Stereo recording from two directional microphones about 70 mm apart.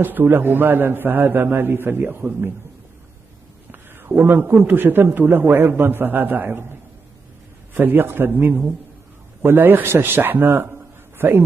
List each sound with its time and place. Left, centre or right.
0.0 s a man's voice: right
3.9 s a man's voice: right
7.7 s a man's voice: right